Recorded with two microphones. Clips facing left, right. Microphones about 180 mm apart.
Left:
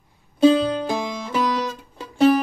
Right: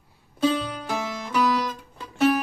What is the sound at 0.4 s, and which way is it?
Music, 25° left (ahead or behind).